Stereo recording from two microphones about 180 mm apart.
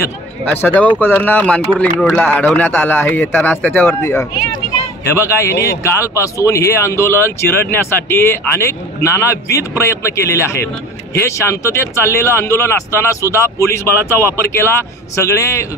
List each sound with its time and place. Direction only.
0.0 s a man's voice: 15° left (ahead or behind)